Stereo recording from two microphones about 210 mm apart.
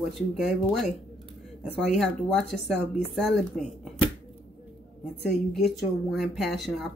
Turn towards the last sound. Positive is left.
turn(degrees=0)  # may be behind; listen again after turning